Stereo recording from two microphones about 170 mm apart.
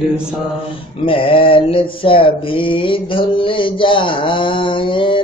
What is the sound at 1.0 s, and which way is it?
Mantra, 30° left (ahead or behind).